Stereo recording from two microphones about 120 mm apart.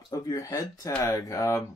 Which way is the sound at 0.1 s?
30° left (ahead or behind).